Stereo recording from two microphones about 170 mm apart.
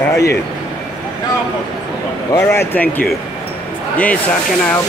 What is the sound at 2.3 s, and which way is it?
Speech, 15° left (ahead or behind).